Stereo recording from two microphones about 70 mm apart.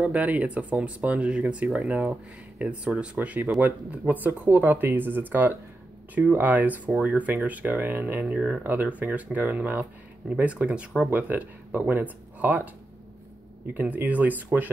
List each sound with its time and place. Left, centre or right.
0.0 s speech: right
13.7 s speech: right